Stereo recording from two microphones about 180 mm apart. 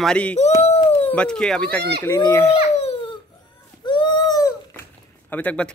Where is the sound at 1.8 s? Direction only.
65° right (ahead or behind).